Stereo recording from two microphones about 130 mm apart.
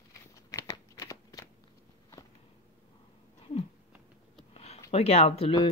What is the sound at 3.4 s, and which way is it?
Cat, 45° left (ahead or behind).